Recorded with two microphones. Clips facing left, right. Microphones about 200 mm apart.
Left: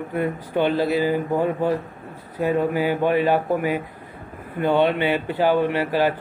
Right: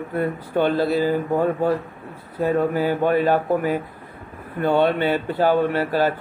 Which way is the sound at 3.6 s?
45° right (ahead or behind).